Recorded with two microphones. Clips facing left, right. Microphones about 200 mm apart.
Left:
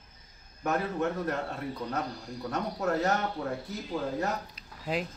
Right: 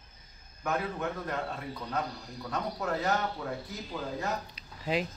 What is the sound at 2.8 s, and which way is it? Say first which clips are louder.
Speech: left 4 dB; 40° left (ahead or behind).